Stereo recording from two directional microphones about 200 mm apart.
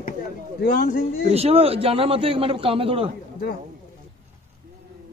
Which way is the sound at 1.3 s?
30° right (ahead or behind).